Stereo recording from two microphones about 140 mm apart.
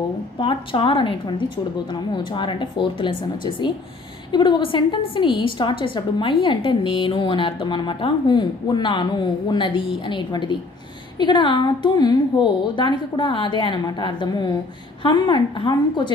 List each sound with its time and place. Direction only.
0.4 s a woman's voice: 40° left (ahead or behind)